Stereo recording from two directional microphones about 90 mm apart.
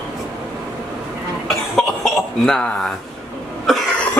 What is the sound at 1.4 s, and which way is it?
Cough, centre (ahead or behind).